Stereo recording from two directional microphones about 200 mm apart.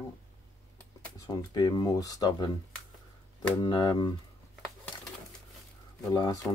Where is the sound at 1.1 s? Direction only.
20° left (ahead or behind).